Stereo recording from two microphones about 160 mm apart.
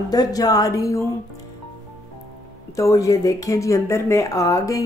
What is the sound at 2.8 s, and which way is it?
Speech, 20° left (ahead or behind).